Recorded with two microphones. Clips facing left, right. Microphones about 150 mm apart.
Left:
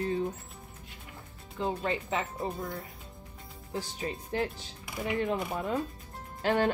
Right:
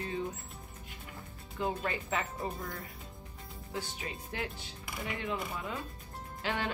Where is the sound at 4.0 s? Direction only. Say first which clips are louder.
Left 7 dB; 40° left (ahead or behind).